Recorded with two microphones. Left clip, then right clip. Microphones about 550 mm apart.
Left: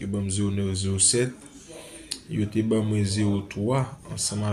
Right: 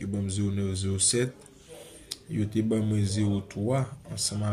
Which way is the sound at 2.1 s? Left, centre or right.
Right.